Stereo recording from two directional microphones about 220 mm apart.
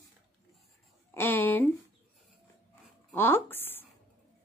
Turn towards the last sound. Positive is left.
turn(degrees=10)  # may be behind; listen again after turning